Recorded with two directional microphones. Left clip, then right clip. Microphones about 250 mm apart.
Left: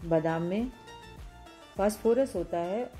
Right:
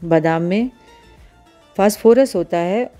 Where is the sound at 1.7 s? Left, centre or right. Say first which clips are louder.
Right 14 dB; right.